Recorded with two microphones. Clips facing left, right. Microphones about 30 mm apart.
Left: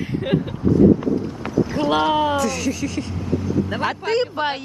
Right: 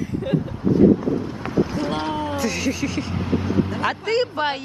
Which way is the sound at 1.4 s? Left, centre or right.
Centre.